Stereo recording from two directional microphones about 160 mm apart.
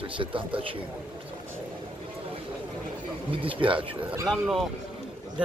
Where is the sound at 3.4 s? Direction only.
35° right (ahead or behind).